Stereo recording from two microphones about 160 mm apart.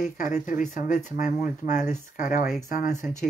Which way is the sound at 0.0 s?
50° left (ahead or behind).